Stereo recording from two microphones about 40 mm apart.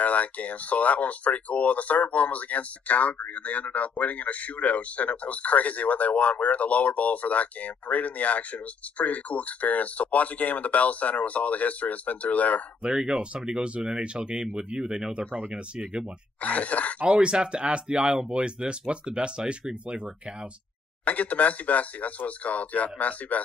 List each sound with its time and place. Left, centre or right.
0.0 s speech: left
12.8 s speech: right
16.3 s speech: left
17.0 s speech: right
21.0 s speech: left